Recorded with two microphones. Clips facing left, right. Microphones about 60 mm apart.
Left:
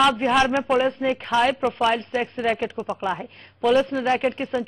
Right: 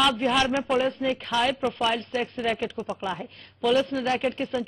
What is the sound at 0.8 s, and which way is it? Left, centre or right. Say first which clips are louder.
Speech: left 3 dB; left.